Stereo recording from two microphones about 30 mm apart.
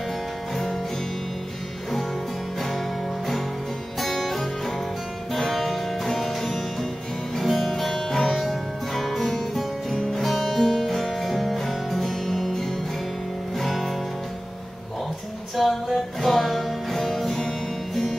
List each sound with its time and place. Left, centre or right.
4.0 s music: centre
9.8 s music: centre
10.2 s music: centre
10.6 s music: centre
15.5 s music: centre